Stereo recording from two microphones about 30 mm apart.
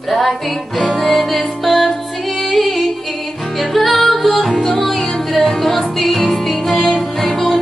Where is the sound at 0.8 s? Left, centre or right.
Centre.